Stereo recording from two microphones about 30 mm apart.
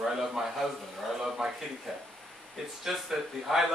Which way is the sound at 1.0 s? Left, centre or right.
Centre.